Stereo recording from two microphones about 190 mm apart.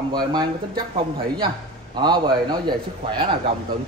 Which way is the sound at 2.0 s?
20° right (ahead or behind).